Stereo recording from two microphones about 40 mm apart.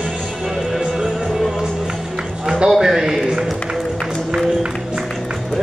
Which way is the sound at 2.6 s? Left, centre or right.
Centre.